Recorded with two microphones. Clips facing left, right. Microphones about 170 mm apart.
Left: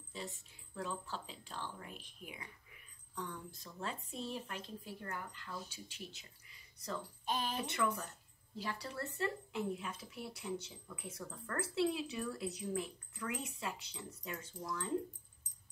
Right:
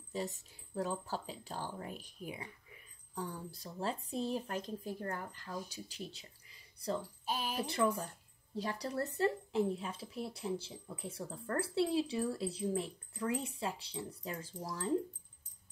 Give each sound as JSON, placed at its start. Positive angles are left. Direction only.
{"t": 0.1, "sound": "speech", "side_deg": -40}
{"t": 7.2, "sound": "speech", "side_deg": -10}
{"t": 7.6, "sound": "speech", "side_deg": -35}